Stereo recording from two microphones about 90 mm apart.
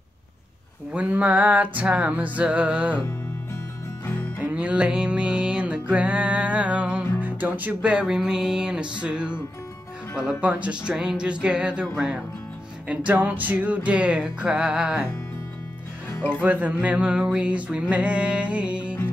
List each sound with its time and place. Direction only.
0.9 s music: 15° right (ahead or behind)
4.5 s music: 15° right (ahead or behind)
10.4 s music: 15° right (ahead or behind)
12.8 s music: 15° right (ahead or behind)
16.3 s music: 15° right (ahead or behind)